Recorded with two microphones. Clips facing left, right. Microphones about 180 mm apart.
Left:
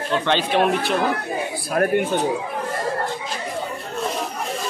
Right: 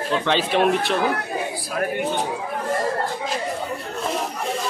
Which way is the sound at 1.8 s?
55° left (ahead or behind).